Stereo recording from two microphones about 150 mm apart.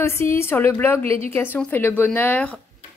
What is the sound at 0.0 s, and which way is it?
Speech, 15° left (ahead or behind).